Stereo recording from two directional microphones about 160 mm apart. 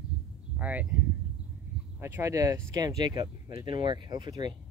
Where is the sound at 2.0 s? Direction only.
15° right (ahead or behind).